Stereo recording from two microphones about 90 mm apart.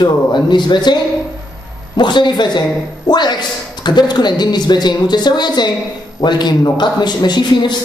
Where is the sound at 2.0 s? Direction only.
55° left (ahead or behind).